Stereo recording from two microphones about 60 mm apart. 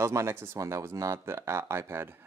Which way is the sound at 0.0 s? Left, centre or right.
Right.